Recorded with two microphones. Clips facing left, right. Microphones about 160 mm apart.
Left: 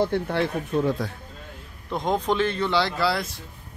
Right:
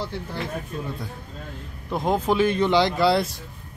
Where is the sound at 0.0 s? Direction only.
60° left (ahead or behind); by 1.1 s 90° left.